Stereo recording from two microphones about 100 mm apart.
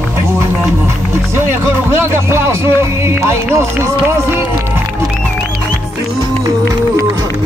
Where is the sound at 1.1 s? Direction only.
25° right (ahead or behind).